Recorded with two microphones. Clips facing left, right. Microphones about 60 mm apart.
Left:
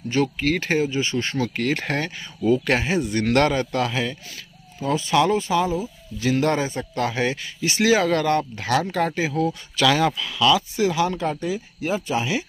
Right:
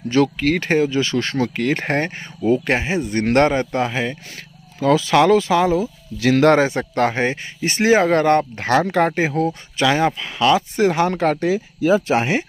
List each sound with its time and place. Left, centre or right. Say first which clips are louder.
0.4 s speech: right 4 dB; right
0.8 s speech: right 4 dB; right
1.6 s speech: right 4 dB; right
2.4 s speech: right 2 dB; right
4.7 s speech: right 5 dB; right
9.8 s speech: right 2 dB; right
12.1 s speech: right 5 dB; right